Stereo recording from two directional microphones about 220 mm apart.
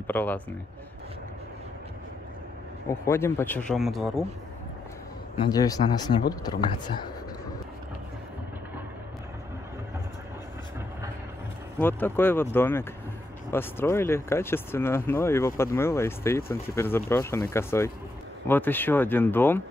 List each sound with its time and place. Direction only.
0.0 s speech: 10° left (ahead or behind)
2.9 s speech: 10° left (ahead or behind)
5.4 s speech: 15° left (ahead or behind)
11.8 s speech: 10° left (ahead or behind)